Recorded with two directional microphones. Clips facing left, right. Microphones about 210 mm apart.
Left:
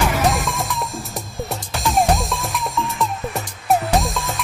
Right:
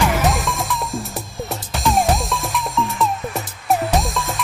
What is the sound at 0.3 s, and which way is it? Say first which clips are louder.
Music: right 1 dB; centre (ahead or behind).